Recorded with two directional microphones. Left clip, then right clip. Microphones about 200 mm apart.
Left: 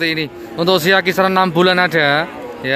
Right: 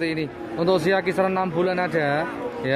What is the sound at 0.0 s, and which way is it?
A man's voice, centre (ahead or behind).